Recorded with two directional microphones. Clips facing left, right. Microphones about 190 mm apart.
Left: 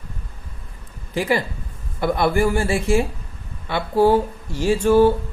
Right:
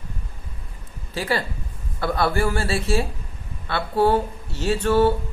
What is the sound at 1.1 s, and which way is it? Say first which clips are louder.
A woman's voice: left 4 dB; 15° left (ahead or behind).